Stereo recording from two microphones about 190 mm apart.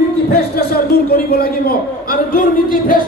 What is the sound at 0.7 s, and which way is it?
A man's voice, 55° left (ahead or behind).